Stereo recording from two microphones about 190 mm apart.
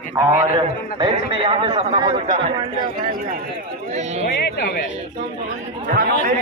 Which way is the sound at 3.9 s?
35° right (ahead or behind).